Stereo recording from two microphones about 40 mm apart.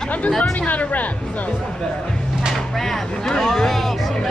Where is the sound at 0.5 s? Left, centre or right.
Left.